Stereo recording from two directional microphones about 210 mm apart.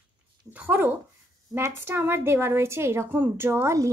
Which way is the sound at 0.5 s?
10° right (ahead or behind).